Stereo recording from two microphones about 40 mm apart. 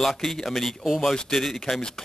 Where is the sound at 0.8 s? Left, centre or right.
Centre.